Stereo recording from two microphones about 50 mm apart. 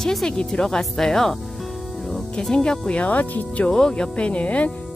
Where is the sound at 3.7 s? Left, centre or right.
Centre.